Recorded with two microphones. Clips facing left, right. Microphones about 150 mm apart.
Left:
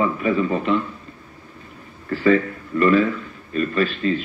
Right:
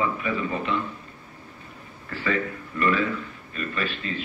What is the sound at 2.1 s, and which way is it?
A man's voice, 40° left (ahead or behind).